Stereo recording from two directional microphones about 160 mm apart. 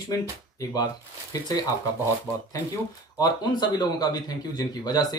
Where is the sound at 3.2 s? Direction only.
25° left (ahead or behind).